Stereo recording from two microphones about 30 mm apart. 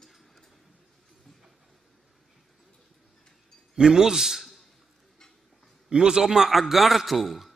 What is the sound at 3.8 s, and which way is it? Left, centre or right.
Speech, centre.